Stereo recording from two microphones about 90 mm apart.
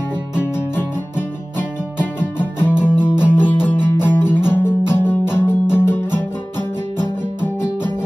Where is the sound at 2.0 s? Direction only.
25° left (ahead or behind).